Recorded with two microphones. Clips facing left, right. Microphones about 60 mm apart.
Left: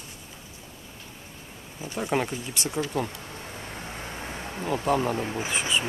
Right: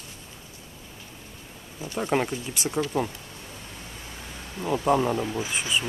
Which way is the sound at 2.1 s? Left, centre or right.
Centre.